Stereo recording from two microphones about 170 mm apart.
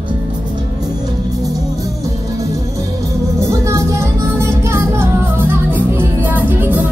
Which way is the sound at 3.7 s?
15° right (ahead or behind).